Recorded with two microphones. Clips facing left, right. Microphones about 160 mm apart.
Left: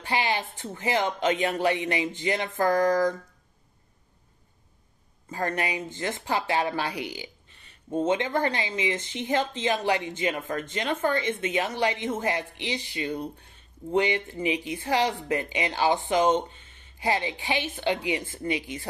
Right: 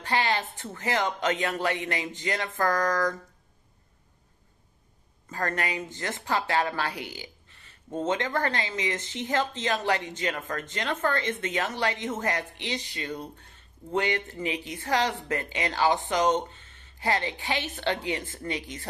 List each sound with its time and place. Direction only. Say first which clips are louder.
0.0 s speech: even; 15° left (ahead or behind)
5.3 s speech: left 2 dB; 15° left (ahead or behind)